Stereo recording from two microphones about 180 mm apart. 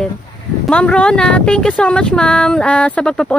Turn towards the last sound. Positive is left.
turn(degrees=5)  # may be behind; listen again after turning